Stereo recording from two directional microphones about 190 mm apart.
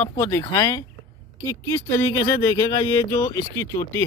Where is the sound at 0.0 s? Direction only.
15° left (ahead or behind).